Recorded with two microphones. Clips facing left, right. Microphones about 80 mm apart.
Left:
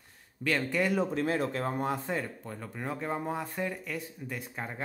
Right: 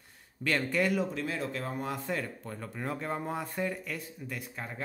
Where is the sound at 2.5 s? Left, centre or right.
Centre.